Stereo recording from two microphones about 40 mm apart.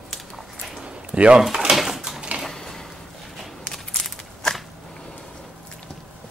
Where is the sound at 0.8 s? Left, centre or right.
Right.